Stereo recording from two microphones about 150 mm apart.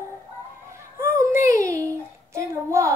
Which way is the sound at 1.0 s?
15° right (ahead or behind).